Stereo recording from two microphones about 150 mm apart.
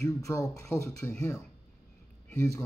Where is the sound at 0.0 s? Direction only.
20° left (ahead or behind).